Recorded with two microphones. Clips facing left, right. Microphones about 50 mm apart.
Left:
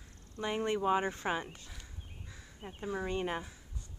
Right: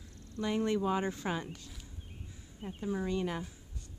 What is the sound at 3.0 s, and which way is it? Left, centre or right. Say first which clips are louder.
Speech: left 1 dB; left.